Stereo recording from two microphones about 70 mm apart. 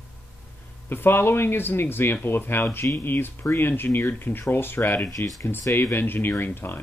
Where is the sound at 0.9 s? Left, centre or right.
Left.